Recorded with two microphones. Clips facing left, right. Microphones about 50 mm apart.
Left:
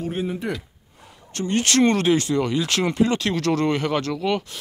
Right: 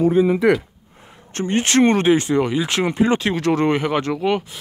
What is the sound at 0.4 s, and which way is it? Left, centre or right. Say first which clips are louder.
Speech: right 12 dB; right.